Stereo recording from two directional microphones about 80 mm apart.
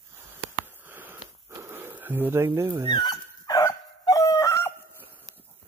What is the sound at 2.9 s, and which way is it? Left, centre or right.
Dog, left.